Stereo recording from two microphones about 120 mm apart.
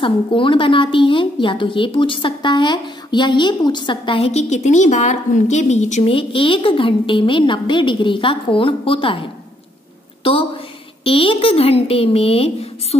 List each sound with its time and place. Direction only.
0.0 s a woman's voice: 45° left (ahead or behind); by 6.0 s 70° left (ahead or behind)
6.0 s a woman's voice: 50° left (ahead or behind)
11.1 s speech: 50° left (ahead or behind)